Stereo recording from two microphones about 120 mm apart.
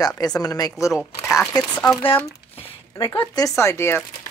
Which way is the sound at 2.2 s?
55° left (ahead or behind).